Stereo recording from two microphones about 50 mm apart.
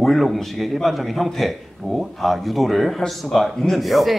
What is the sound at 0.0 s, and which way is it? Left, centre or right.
Speech, centre.